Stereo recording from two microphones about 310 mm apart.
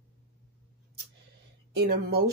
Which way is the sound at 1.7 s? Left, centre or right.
Right.